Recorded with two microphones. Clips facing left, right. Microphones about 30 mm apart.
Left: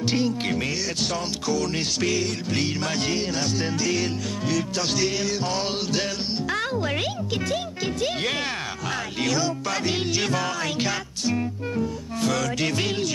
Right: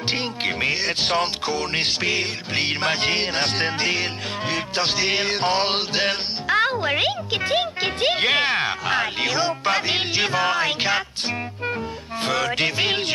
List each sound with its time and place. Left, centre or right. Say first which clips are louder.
0.1 s music: right 1 dB; right
6.4 s music: right 7 dB; right